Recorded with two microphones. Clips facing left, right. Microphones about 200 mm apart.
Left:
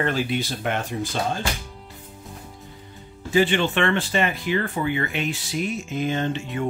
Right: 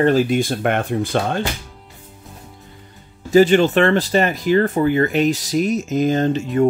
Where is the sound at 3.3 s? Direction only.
40° right (ahead or behind).